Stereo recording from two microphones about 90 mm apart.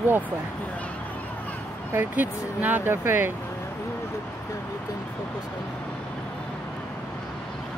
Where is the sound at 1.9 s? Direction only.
20° right (ahead or behind).